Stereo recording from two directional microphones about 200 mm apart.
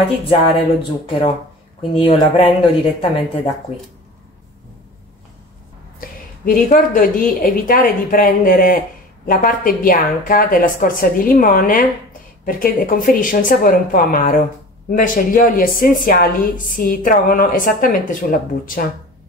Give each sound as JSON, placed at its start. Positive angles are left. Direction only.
{"t": 0.8, "sound": "speech", "side_deg": 25}
{"t": 5.9, "sound": "a woman's voice", "side_deg": 40}